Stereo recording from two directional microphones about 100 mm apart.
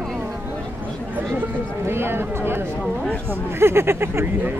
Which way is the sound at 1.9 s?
25° right (ahead or behind).